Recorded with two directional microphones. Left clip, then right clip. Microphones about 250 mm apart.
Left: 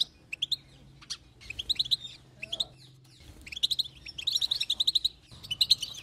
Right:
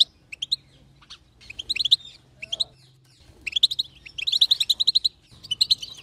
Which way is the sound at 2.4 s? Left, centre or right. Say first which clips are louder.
Right 6 dB; centre.